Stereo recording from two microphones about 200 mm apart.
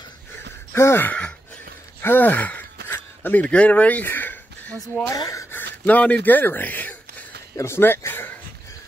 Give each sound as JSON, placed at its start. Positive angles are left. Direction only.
{"t": 0.7, "sound": "speech", "side_deg": 10}
{"t": 2.0, "sound": "gasp", "side_deg": 10}
{"t": 5.1, "sound": "speech", "side_deg": 15}